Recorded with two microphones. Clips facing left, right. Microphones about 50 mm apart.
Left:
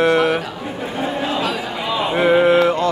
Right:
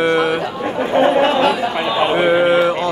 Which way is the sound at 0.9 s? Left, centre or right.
Right.